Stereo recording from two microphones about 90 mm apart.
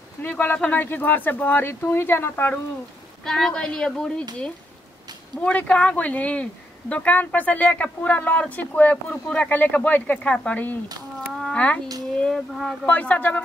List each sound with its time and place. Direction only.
0.2 s speech: 20° left (ahead or behind)
3.3 s speech: 5° left (ahead or behind)
5.4 s a child's voice: 15° left (ahead or behind)